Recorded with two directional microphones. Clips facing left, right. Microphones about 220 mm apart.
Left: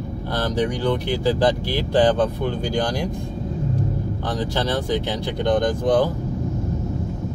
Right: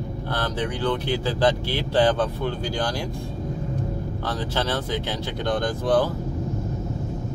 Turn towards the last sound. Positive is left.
turn(degrees=15)  # may be behind; listen again after turning